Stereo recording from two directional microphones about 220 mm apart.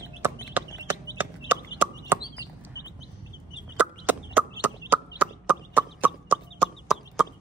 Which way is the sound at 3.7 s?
5° right (ahead or behind).